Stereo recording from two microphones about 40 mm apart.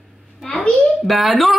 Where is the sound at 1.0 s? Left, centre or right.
Centre.